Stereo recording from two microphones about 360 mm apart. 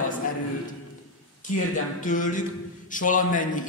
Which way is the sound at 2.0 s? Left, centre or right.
Left.